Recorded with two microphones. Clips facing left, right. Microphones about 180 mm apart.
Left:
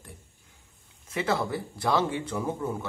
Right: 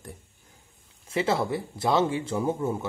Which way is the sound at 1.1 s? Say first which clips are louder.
Right 3 dB; 25° right (ahead or behind).